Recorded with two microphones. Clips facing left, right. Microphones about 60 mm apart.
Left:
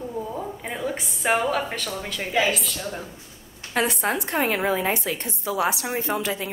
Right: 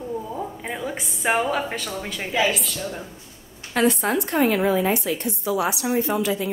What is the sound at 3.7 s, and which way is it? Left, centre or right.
A woman's voice, centre.